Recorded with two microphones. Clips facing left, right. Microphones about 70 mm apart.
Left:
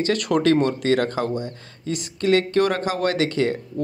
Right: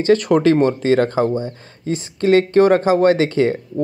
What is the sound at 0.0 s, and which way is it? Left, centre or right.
A man's voice, right.